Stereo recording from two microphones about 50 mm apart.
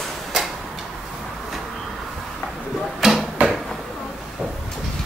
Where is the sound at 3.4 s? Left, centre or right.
Right.